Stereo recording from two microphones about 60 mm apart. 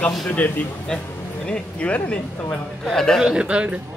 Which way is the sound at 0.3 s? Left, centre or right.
Left.